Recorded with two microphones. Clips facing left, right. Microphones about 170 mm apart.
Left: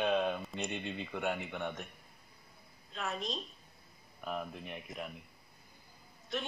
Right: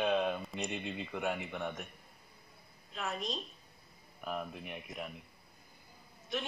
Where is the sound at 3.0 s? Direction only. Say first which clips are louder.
Even; centre (ahead or behind).